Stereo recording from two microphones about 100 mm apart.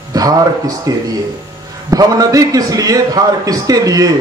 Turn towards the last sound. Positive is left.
turn(degrees=-35)  # may be behind; listen again after turning